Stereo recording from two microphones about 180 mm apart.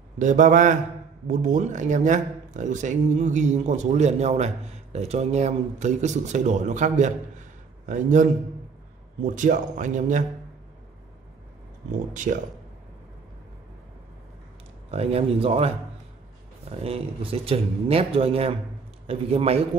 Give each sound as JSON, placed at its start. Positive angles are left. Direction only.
{"t": 0.2, "sound": "a man's voice", "side_deg": -45}
{"t": 12.1, "sound": "a man's voice", "side_deg": -45}
{"t": 14.9, "sound": "speech", "side_deg": -35}
{"t": 16.7, "sound": "speech", "side_deg": -35}